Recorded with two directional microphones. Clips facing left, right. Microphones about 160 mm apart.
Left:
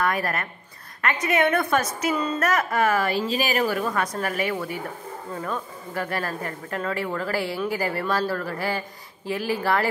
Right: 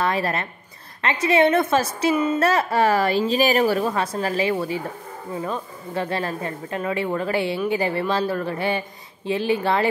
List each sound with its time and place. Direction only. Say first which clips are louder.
0.0 s speech: right 2 dB; 25° right (ahead or behind)